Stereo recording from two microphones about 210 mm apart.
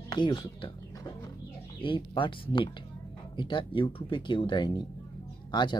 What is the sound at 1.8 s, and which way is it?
Speech, 25° left (ahead or behind).